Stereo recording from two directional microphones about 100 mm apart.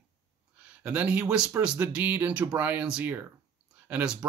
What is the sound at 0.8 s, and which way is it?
Speech, 15° right (ahead or behind).